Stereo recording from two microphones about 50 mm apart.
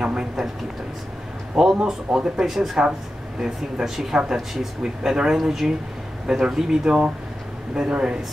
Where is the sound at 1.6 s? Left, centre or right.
Centre.